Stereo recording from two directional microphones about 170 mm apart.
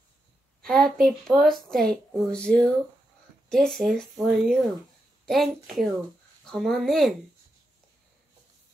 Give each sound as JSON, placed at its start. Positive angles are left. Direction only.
{"t": 0.6, "sound": "a woman's voice", "side_deg": 0}